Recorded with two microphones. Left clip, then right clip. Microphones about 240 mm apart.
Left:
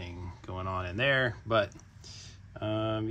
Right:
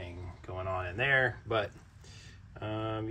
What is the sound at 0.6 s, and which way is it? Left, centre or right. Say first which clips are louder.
Speech: left 1 dB; left.